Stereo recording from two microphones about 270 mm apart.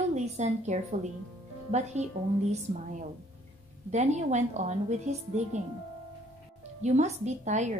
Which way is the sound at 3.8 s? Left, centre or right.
Right.